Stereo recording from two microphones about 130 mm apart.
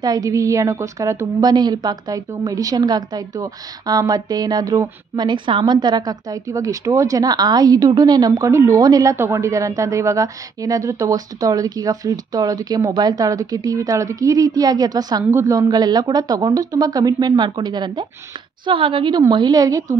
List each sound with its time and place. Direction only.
0.0 s a woman's voice: 30° right (ahead or behind)